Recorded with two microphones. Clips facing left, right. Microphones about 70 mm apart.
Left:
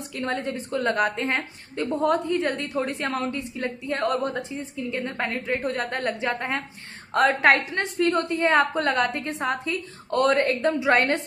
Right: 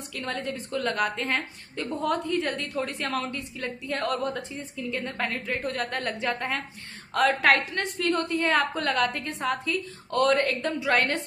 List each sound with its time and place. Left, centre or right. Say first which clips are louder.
0.1 s a woman's voice: left 4 dB; left